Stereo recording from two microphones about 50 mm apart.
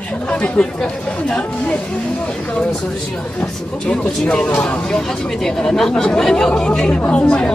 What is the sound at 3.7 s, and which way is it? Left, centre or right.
Speech, centre.